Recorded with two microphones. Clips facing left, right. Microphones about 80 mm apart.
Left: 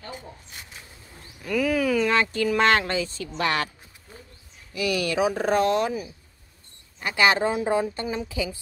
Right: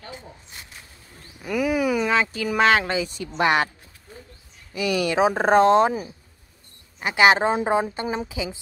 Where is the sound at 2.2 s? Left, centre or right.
Centre.